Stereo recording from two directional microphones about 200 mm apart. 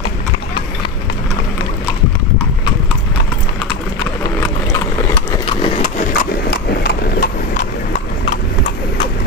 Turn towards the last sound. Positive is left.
turn(degrees=45)  # may be behind; listen again after turning